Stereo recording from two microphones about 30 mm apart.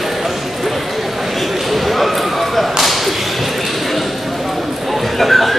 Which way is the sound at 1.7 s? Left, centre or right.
Centre.